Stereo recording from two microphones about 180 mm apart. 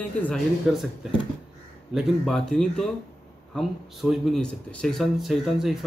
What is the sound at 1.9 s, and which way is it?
Speech, centre (ahead or behind).